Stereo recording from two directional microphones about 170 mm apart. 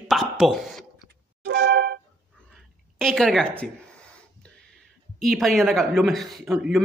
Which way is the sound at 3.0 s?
Centre (ahead or behind).